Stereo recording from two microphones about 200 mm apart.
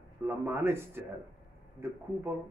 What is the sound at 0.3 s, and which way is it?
Speech, 10° right (ahead or behind).